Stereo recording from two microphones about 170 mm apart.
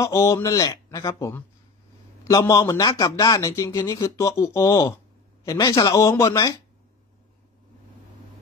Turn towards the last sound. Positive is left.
turn(degrees=20)  # may be behind; listen again after turning